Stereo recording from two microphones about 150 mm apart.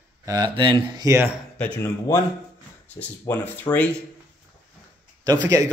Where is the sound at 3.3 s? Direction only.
15° left (ahead or behind).